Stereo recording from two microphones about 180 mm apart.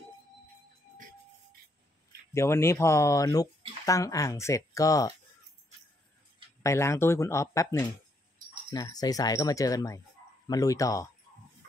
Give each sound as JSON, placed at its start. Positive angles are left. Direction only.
{"t": 2.3, "sound": "speech", "side_deg": 15}
{"t": 6.6, "sound": "speech", "side_deg": 15}